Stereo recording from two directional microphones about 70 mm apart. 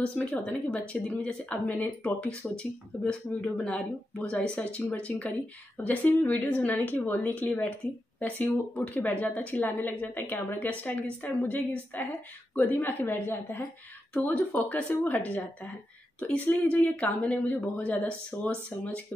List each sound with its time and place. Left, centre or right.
0.5 s a woman's voice: centre
14.3 s a woman's voice: left
16.4 s a woman's voice: left